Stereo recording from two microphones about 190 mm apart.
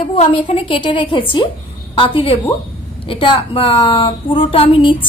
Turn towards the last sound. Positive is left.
turn(degrees=30)  # may be behind; listen again after turning